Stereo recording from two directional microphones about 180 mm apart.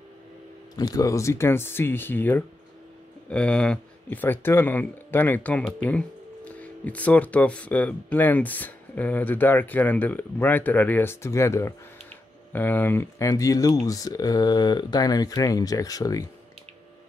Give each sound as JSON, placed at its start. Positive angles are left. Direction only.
{"t": 0.7, "sound": "speech", "side_deg": 20}